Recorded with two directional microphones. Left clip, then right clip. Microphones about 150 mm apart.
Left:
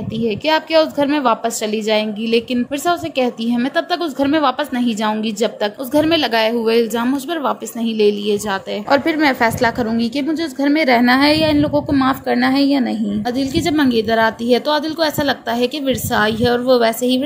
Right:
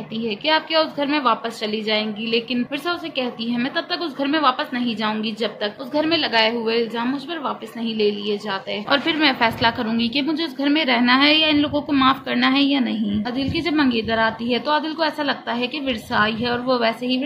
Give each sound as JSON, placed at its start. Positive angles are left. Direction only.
{"t": 0.2, "sound": "a woman's voice", "side_deg": 50}
{"t": 9.8, "sound": "a woman's voice", "side_deg": 40}